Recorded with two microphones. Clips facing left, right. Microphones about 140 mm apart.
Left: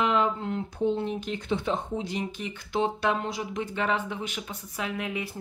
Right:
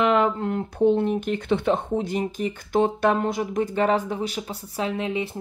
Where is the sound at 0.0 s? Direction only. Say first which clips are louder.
Right 5 dB; 60° right (ahead or behind).